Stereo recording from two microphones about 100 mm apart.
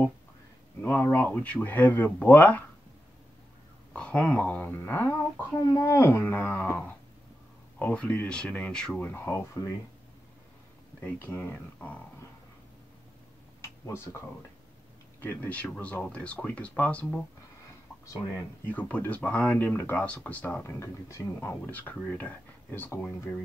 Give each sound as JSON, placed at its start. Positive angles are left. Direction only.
{"t": 0.7, "sound": "speech", "side_deg": 15}
{"t": 3.9, "sound": "speech", "side_deg": 10}
{"t": 5.6, "sound": "speech", "side_deg": 35}
{"t": 7.8, "sound": "speech", "side_deg": 15}
{"t": 9.3, "sound": "speech", "side_deg": 30}
{"t": 11.0, "sound": "speech", "side_deg": 20}
{"t": 13.6, "sound": "a sound", "side_deg": 30}
{"t": 15.1, "sound": "speech", "side_deg": 20}
{"t": 18.0, "sound": "speech", "side_deg": 35}
{"t": 18.7, "sound": "speech", "side_deg": 15}